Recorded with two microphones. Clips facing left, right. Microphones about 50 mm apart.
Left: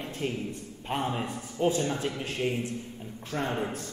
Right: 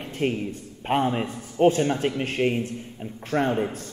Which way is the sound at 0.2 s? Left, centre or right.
Right.